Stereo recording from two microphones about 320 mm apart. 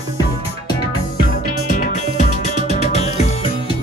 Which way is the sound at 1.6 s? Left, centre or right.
Left.